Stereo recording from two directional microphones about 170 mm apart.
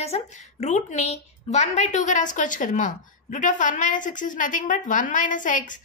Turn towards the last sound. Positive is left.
turn(degrees=50)  # may be behind; listen again after turning